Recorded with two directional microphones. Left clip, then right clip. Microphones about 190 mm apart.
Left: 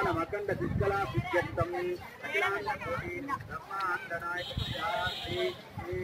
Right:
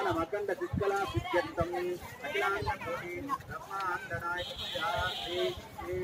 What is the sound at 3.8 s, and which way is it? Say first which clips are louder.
Speech: left 1 dB; 30° right (ahead or behind).